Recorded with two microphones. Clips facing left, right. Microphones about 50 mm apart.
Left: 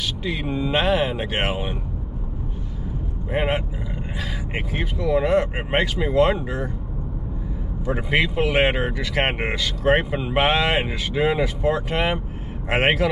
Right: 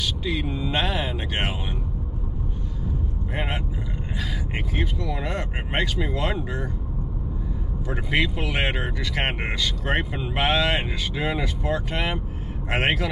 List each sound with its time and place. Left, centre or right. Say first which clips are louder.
0.0 s speech: even; centre
3.3 s speech: left 8 dB; centre
7.8 s speech: left 3 dB; centre